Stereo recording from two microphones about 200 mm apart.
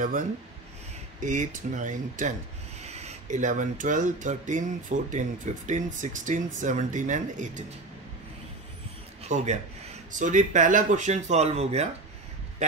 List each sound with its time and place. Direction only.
1.2 s speech: 40° right (ahead or behind)
9.2 s a man's voice: 35° right (ahead or behind)